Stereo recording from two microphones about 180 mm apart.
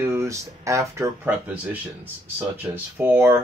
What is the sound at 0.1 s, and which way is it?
Speech, 15° right (ahead or behind).